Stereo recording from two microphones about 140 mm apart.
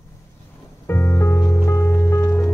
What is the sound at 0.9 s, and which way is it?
Music, 20° left (ahead or behind).